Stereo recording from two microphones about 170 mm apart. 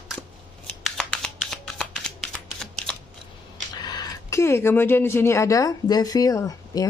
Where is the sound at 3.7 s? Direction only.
25° left (ahead or behind).